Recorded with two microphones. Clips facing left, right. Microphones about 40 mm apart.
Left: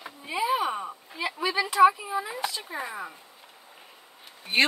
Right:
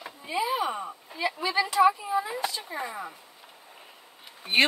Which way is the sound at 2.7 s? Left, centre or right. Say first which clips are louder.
Even; centre.